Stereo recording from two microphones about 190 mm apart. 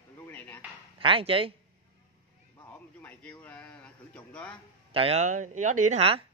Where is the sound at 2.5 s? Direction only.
10° left (ahead or behind).